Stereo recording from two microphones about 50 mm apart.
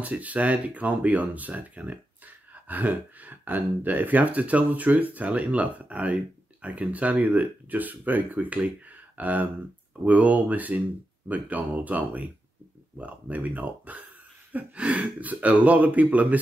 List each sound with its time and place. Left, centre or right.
0.0 s speech: right
14.5 s throat clearing: right
14.9 s speech: right